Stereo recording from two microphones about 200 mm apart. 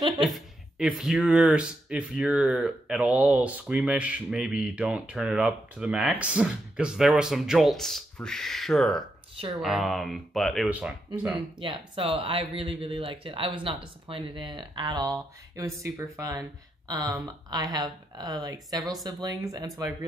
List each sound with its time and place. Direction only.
0.2 s speech: centre (ahead or behind)
11.6 s speech: 25° right (ahead or behind)